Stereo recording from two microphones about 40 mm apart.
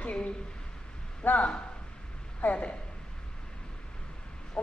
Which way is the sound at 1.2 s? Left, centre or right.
Left.